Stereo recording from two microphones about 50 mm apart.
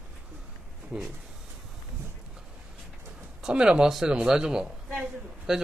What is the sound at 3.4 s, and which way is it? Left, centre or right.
A man's voice, centre.